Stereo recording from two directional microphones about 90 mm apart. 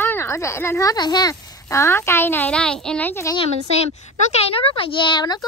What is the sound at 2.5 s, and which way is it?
Speech, 10° left (ahead or behind).